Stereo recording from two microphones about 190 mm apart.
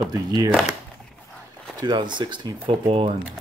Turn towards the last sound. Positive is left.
turn(degrees=-25)  # may be behind; listen again after turning